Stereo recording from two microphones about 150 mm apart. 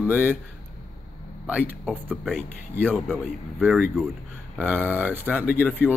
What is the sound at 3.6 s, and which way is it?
Speech, 10° right (ahead or behind).